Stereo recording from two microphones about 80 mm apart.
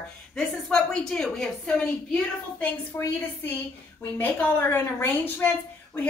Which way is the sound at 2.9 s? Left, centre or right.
Left.